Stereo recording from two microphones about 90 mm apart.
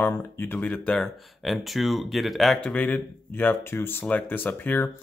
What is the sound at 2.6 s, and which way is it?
Speech, 15° left (ahead or behind).